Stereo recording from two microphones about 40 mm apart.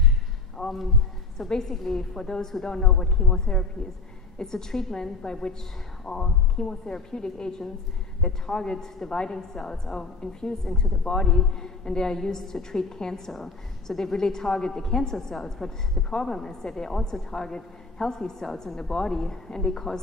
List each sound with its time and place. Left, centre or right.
0.6 s a sound: centre
1.5 s a woman's voice: centre
6.5 s a woman's voice: centre